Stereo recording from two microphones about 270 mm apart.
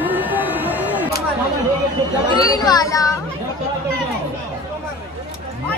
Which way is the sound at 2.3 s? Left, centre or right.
Centre.